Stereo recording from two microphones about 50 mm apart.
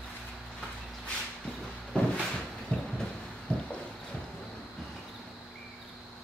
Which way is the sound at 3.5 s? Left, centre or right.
Left.